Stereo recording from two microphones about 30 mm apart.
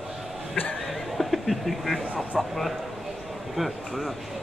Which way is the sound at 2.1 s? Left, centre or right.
Centre.